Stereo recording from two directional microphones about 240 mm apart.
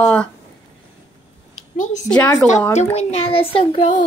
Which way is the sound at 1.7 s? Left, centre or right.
Left.